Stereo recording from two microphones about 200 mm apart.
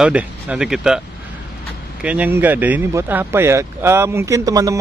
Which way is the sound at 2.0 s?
10° right (ahead or behind).